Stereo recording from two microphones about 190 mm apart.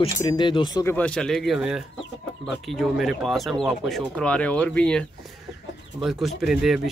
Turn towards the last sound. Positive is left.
turn(degrees=0)  # may be behind; listen again after turning